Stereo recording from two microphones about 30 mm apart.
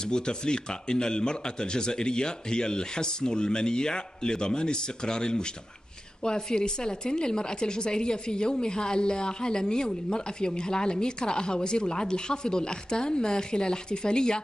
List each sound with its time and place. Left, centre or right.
0.0 s a woman's voice: left